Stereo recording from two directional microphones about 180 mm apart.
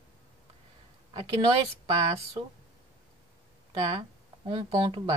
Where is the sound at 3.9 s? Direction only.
30° right (ahead or behind).